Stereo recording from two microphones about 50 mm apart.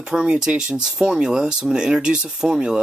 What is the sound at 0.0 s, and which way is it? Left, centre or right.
Speech, centre.